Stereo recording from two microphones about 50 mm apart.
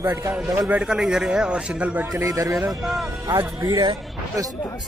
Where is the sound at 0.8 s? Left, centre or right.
Centre.